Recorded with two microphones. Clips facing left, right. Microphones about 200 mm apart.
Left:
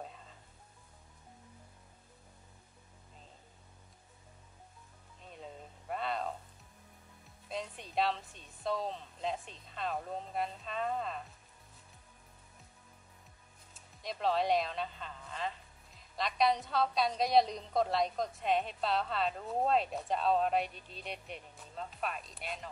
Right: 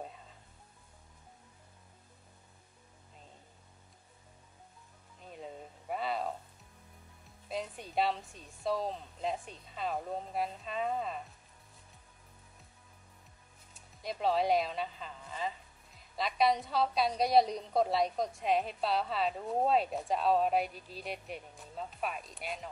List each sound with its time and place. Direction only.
5.3 s a sound: 5° right (ahead or behind)
7.4 s a woman's voice: centre (ahead or behind)
14.0 s a woman's voice: centre (ahead or behind)